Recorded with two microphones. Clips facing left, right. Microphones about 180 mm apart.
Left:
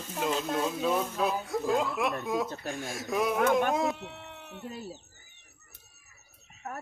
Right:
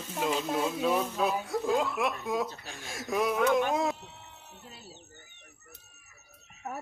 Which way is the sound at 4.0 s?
65° left (ahead or behind).